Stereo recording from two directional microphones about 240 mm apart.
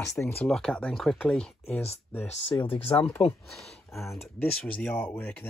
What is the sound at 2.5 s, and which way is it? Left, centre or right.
Speech, centre.